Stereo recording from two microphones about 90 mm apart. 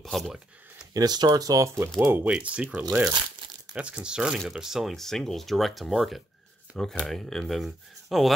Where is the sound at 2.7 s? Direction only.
20° right (ahead or behind).